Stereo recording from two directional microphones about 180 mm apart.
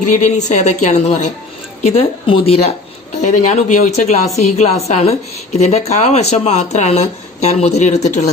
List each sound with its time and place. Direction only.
0.1 s a woman's voice: 40° left (ahead or behind)